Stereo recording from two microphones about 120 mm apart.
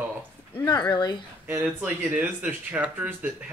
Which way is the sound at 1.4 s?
15° right (ahead or behind).